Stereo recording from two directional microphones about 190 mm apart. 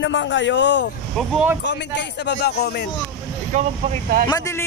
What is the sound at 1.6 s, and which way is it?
Speech, 65° left (ahead or behind).